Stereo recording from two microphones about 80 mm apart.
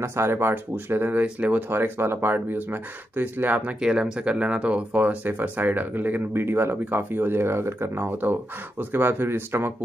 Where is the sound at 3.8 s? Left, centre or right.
Centre.